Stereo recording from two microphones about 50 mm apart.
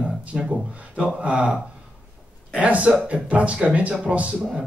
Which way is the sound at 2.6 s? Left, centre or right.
Right.